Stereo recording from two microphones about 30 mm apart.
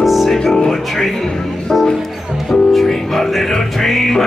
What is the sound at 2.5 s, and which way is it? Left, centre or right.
Music, centre.